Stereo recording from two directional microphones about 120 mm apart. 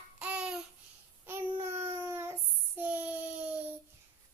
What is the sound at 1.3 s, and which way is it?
Child singing, 20° right (ahead or behind).